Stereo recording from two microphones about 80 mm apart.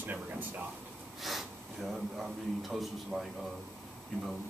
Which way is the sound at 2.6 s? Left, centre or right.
Centre.